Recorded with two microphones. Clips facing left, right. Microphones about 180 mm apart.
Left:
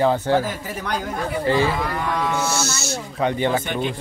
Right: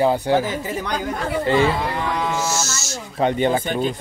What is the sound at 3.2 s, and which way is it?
Speech, 20° right (ahead or behind).